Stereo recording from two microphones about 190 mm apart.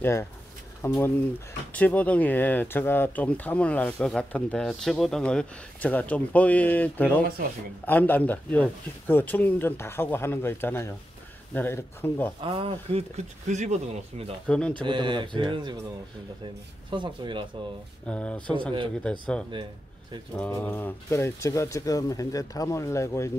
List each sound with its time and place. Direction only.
0.0 s speech: 10° left (ahead or behind)
12.4 s speech: 30° right (ahead or behind)
14.5 s speech: 5° left (ahead or behind)
14.8 s speech: 25° right (ahead or behind)
16.9 s speech: 25° right (ahead or behind)
18.0 s speech: 5° left (ahead or behind)